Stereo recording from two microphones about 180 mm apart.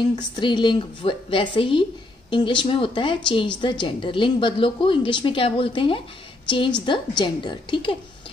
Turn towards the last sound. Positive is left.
turn(degrees=25)  # may be behind; listen again after turning